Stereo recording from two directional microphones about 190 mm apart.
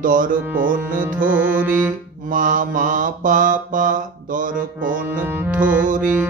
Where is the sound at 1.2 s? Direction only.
10° right (ahead or behind).